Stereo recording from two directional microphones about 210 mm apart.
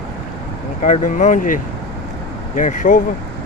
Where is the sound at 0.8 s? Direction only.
35° left (ahead or behind).